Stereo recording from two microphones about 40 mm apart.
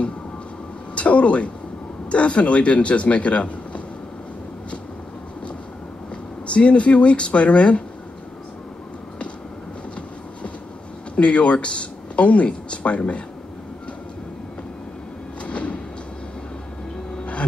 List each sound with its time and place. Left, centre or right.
0.9 s speech: left
6.4 s speech: left
11.1 s speech: left
15.4 s sliding door: left
17.2 s music: left